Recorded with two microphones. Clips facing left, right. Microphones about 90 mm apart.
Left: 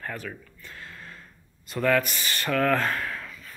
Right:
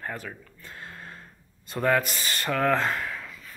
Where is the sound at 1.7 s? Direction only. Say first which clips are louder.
Left 1 dB; 25° right (ahead or behind).